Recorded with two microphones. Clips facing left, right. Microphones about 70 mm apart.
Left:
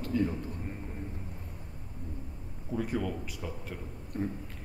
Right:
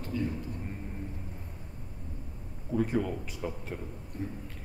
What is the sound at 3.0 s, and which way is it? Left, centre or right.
Speech, centre.